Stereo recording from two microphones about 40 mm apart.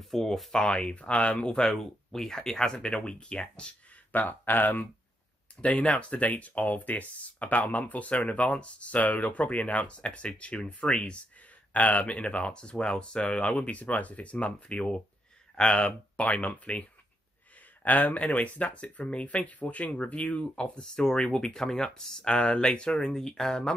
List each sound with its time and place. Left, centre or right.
0.0 s speech: centre
0.5 s speech: left
4.1 s speech: left
5.6 s speech: left
17.8 s speech: left
20.8 s speech: centre
22.3 s speech: left
22.9 s speech: centre